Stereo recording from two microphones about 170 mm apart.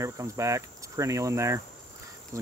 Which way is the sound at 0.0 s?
20° right (ahead or behind).